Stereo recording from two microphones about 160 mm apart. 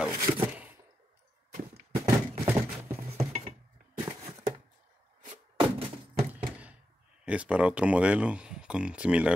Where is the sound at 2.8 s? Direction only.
40° right (ahead or behind).